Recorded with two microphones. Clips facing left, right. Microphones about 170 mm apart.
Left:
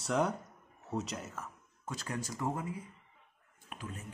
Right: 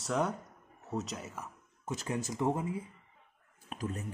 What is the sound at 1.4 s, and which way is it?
Speech, 20° right (ahead or behind).